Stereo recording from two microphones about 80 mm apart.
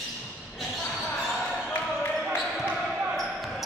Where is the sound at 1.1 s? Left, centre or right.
Centre.